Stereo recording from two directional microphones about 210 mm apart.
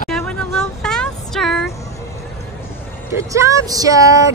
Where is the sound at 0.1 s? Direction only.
5° left (ahead or behind).